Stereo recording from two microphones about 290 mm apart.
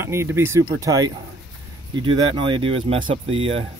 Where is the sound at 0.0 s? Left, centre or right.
Centre.